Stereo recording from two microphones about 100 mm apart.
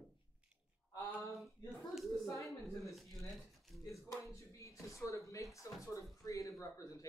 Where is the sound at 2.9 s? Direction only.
Centre (ahead or behind).